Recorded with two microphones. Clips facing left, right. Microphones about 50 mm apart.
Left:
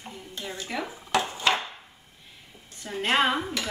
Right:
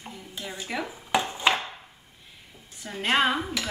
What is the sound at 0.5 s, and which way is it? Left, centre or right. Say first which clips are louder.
Dishes: right 1 dB; centre.